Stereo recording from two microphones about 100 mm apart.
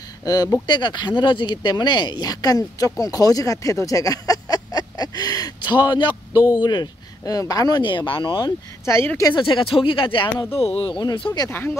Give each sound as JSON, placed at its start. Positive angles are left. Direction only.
{"t": 0.2, "sound": "speech", "side_deg": 40}
{"t": 7.8, "sound": "speech", "side_deg": 55}
{"t": 8.9, "sound": "speech", "side_deg": 25}
{"t": 9.3, "sound": "speech", "side_deg": 55}
{"t": 10.5, "sound": "speech", "side_deg": 85}
{"t": 11.3, "sound": "speech", "side_deg": 30}